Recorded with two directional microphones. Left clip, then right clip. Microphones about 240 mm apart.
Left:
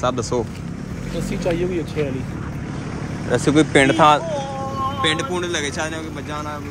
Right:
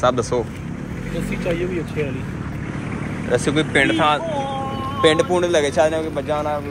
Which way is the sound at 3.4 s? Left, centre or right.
Left.